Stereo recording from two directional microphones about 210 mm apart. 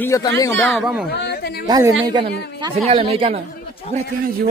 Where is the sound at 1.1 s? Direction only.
50° left (ahead or behind).